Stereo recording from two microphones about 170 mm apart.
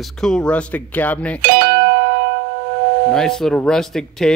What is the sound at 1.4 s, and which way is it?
Music, 65° right (ahead or behind).